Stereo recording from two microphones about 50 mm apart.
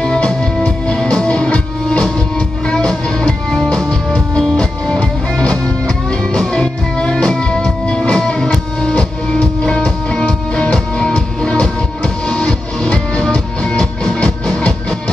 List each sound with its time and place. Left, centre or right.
0.0 s music: centre